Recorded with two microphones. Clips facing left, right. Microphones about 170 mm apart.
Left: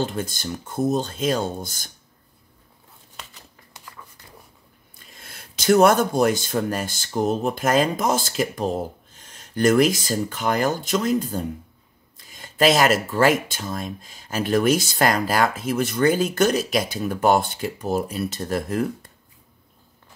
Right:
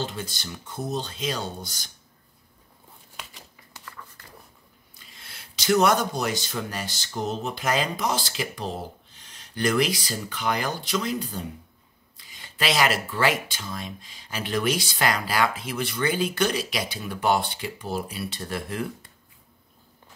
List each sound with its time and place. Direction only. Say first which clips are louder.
0.0 s speech: left 6 dB; 50° left (ahead or behind)
4.9 s speech: left 4 dB; 50° left (ahead or behind)